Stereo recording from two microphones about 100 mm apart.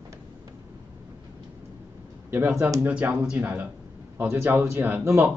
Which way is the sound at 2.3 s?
20° right (ahead or behind).